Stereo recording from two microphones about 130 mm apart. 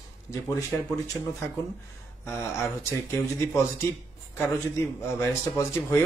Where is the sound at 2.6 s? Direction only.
20° left (ahead or behind).